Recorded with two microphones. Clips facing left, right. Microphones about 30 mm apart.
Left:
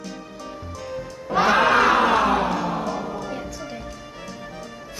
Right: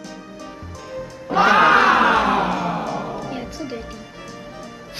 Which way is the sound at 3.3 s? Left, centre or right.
Right.